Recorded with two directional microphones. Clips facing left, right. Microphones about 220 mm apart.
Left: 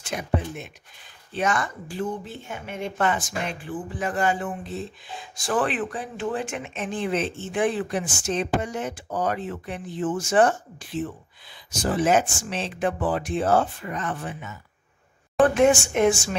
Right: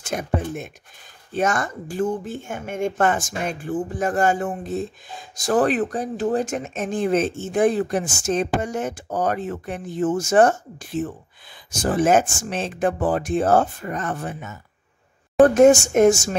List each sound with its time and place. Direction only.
0.0 s speech: 45° right (ahead or behind)